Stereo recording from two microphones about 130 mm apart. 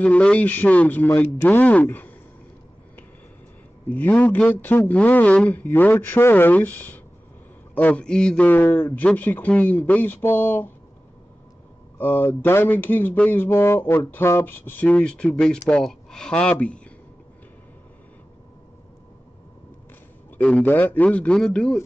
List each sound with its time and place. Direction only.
0.0 s speech: 10° left (ahead or behind)
3.9 s speech: 15° left (ahead or behind)
12.0 s speech: 15° left (ahead or behind)
20.3 s speech: 10° left (ahead or behind)